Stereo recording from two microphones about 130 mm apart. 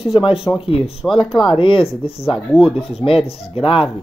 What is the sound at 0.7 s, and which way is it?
Speech, 45° left (ahead or behind).